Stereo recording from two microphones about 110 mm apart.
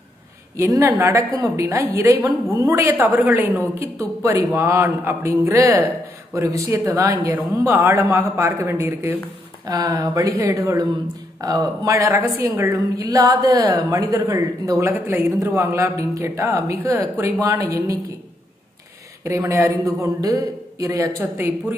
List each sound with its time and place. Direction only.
0.6 s a man's voice: 30° right (ahead or behind)
9.7 s a woman's voice: 35° right (ahead or behind)
19.2 s a man's voice: 25° right (ahead or behind)